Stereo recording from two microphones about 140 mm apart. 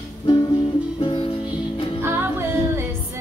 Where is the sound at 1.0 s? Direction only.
40° left (ahead or behind).